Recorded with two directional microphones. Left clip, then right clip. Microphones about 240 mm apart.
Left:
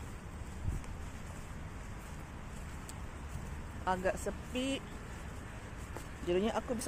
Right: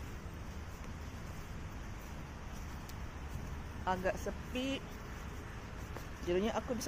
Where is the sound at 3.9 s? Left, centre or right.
Centre.